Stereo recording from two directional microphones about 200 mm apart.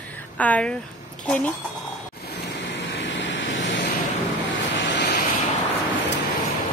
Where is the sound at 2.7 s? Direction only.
65° left (ahead or behind).